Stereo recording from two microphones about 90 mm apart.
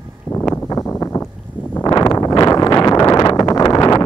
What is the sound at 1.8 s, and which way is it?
Wind noise, 45° left (ahead or behind).